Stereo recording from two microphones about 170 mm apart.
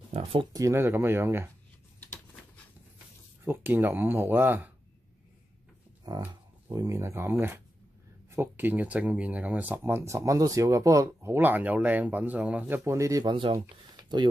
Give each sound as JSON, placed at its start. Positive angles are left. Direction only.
{"t": 0.1, "sound": "speech", "side_deg": -35}
{"t": 3.4, "sound": "speech", "side_deg": -10}
{"t": 6.1, "sound": "speech", "side_deg": -20}